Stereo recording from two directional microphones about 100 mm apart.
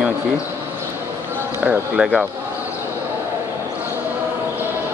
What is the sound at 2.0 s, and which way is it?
Speech, 10° right (ahead or behind).